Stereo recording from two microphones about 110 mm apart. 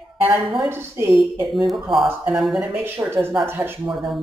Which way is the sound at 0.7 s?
25° right (ahead or behind).